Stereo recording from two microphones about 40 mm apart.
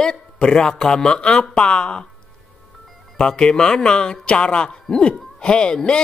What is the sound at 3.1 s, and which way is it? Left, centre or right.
Speech, centre.